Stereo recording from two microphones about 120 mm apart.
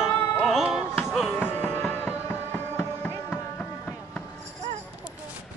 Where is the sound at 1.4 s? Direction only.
15° left (ahead or behind).